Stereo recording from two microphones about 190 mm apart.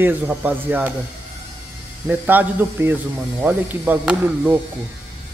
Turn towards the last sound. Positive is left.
turn(degrees=-10)  # may be behind; listen again after turning